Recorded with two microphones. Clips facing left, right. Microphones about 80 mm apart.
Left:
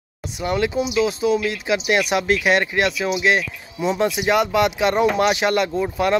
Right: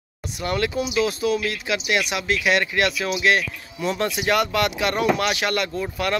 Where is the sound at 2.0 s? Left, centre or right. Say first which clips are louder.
Left 5 dB; left.